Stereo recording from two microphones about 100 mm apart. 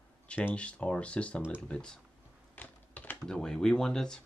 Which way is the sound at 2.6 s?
15° left (ahead or behind).